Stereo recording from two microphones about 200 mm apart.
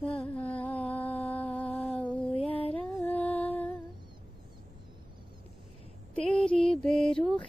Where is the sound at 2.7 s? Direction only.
5° left (ahead or behind).